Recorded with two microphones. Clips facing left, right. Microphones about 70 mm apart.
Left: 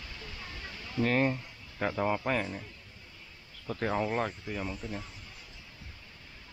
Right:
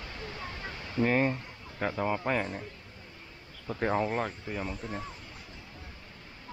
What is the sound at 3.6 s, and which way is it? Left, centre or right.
Speech, centre.